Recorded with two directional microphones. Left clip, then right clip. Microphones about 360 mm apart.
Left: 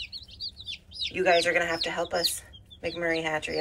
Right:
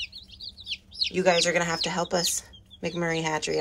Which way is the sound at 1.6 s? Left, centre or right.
Centre.